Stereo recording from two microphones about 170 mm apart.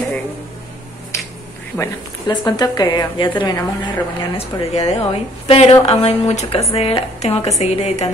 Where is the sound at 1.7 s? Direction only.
25° left (ahead or behind).